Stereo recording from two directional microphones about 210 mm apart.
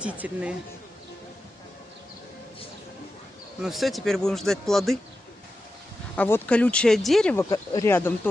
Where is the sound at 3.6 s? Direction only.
Centre (ahead or behind).